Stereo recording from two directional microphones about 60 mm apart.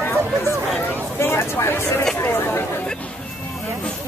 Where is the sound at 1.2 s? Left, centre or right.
Left.